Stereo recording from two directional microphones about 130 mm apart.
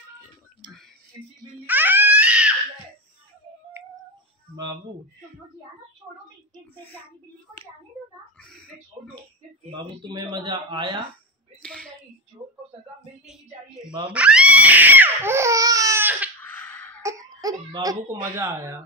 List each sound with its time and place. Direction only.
1.7 s crying: 15° right (ahead or behind)
3.8 s a sound: 20° right (ahead or behind)
9.7 s speech: 40° right (ahead or behind)
11.6 s a sound: 5° left (ahead or behind)
14.1 s crying: 10° right (ahead or behind); by 16.0 s 25° right (ahead or behind)
16.0 s baby cry: 15° right (ahead or behind)
16.3 s a sound: 15° left (ahead or behind)
17.2 s crying: 25° right (ahead or behind)
17.7 s speech: 25° right (ahead or behind)